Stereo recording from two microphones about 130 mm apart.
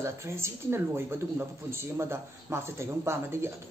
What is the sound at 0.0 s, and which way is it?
A woman's voice, 20° right (ahead or behind).